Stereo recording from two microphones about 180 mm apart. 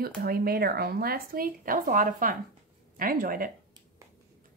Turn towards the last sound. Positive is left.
turn(degrees=-50)  # may be behind; listen again after turning